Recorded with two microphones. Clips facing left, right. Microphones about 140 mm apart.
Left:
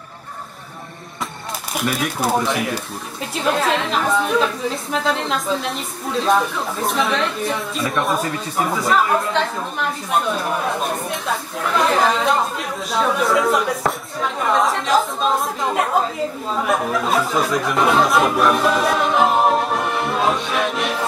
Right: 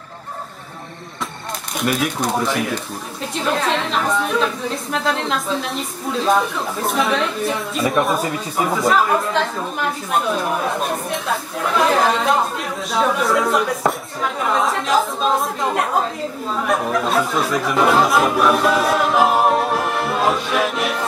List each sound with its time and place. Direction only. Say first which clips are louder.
1.7 s speech: right 2 dB; centre (ahead or behind)